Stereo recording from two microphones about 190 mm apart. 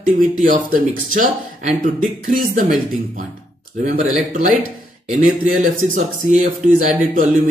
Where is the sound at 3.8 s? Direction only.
40° right (ahead or behind).